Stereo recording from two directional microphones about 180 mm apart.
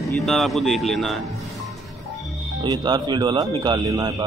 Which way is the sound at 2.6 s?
25° right (ahead or behind).